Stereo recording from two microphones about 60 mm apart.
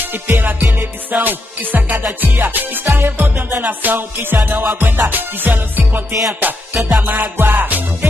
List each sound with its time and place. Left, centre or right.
0.0 s music: right
2.9 s music: right